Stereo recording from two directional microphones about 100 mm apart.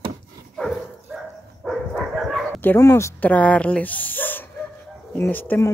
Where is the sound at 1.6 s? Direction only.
Centre (ahead or behind).